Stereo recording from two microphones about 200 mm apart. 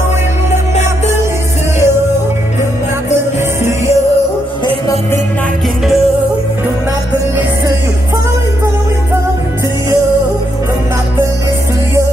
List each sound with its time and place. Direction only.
3.2 s music: 15° right (ahead or behind)